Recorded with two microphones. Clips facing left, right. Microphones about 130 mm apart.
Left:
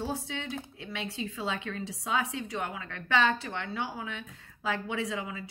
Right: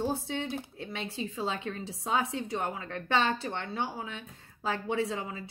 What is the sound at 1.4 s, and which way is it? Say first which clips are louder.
A woman's voice: right 1 dB; 35° right (ahead or behind).